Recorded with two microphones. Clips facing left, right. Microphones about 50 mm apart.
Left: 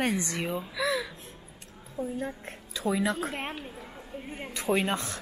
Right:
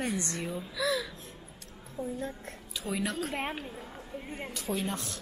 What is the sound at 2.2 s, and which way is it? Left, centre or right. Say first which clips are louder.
A woman's voice: left 3 dB; left.